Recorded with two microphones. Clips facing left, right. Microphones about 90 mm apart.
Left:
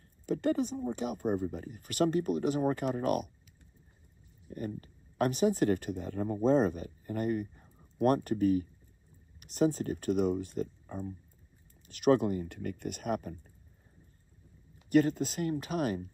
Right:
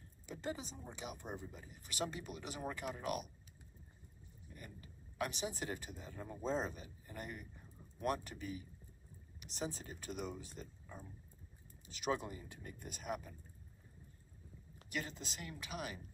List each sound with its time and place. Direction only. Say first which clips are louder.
0.3 s speech: left 15 dB; 55° left (ahead or behind)
4.5 s speech: left 17 dB; 45° left (ahead or behind)
14.9 s speech: left 18 dB; 45° left (ahead or behind)